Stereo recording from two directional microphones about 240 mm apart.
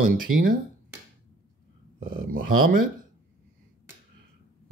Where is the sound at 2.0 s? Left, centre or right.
Right.